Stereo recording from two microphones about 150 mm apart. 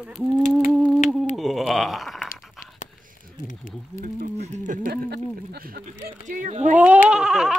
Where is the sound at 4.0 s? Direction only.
55° right (ahead or behind).